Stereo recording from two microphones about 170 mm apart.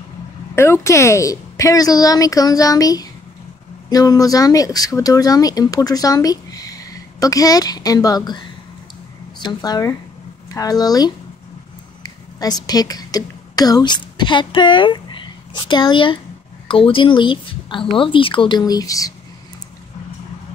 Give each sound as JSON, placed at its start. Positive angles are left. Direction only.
{"t": 0.6, "sound": "a woman's voice", "side_deg": 15}